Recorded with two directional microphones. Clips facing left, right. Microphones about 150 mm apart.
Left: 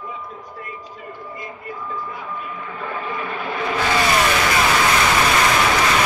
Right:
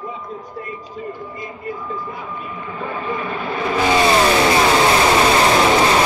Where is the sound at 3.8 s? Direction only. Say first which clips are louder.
Right 5 dB; 25° right (ahead or behind).